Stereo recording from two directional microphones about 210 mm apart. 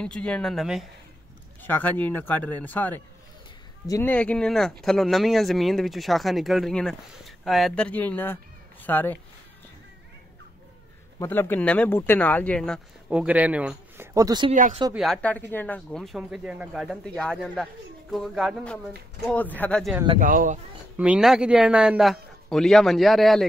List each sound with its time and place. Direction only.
0.0 s speech: 5° left (ahead or behind)
11.1 s speech: 10° left (ahead or behind); by 14.0 s 5° right (ahead or behind)
14.1 s speech: 20° right (ahead or behind)
14.5 s speech: 35° right (ahead or behind)
15.0 s speech: 5° left (ahead or behind)
20.2 s speech: 40° right (ahead or behind)
20.9 s speech: 5° right (ahead or behind)